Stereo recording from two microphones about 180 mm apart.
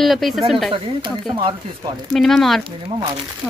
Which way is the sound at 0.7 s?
25° right (ahead or behind).